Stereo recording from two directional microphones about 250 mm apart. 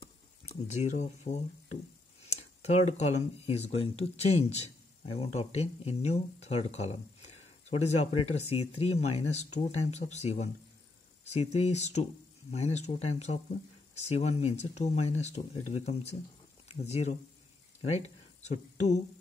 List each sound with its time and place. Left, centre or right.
0.5 s speech: left